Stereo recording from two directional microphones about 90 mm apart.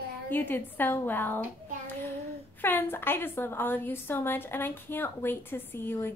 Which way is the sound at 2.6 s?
25° left (ahead or behind).